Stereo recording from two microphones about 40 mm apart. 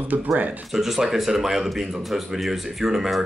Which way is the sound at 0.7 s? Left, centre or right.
Centre.